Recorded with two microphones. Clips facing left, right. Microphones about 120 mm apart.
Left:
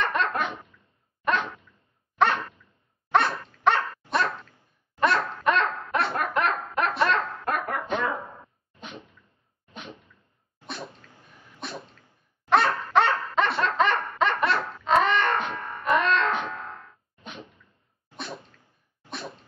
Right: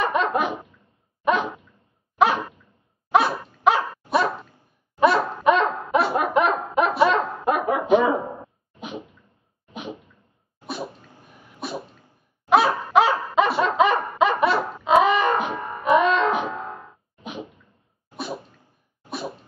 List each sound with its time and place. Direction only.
0.0 s dog: 5° right (ahead or behind)
3.8 s dog: 20° right (ahead or behind)
4.1 s dog: 10° right (ahead or behind)
5.0 s dog: 5° right (ahead or behind)
8.2 s a sound: 30° right (ahead or behind)
8.7 s sneeze: centre (ahead or behind)
10.9 s sneeze: 20° right (ahead or behind)
11.6 s sneeze: 5° right (ahead or behind)
12.4 s a sound: 5° right (ahead or behind)
12.9 s dog: 5° right (ahead or behind)
14.9 s music: 5° right (ahead or behind)
16.6 s music: 25° right (ahead or behind)
17.2 s a sound: 5° right (ahead or behind)
18.1 s sneeze: 5° right (ahead or behind)